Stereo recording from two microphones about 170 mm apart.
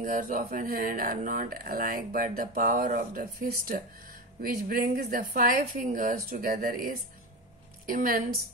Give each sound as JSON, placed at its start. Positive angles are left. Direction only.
{"t": 0.0, "sound": "a woman's voice", "side_deg": -50}